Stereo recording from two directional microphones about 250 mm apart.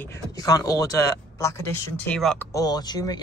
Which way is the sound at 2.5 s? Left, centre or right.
Centre.